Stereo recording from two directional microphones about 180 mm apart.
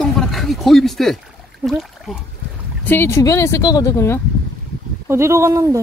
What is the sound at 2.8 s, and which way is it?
Speech, 10° left (ahead or behind).